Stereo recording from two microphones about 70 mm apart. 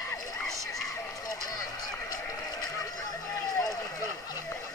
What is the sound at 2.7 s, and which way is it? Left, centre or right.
Run, left.